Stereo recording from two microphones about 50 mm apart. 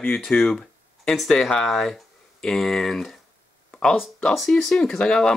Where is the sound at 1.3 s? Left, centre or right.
Centre.